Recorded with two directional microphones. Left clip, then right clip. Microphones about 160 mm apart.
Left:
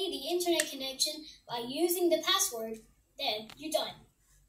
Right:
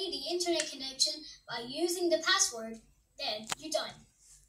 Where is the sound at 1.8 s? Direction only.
55° right (ahead or behind).